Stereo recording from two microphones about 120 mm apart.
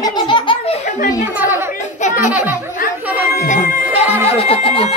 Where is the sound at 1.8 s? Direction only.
85° left.